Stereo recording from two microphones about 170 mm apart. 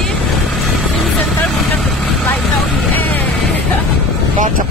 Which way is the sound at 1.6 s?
Centre (ahead or behind).